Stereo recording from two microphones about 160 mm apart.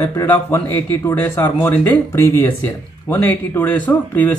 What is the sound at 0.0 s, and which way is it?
Speech, 15° left (ahead or behind).